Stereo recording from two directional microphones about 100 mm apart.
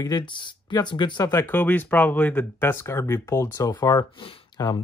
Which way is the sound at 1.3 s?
20° left (ahead or behind).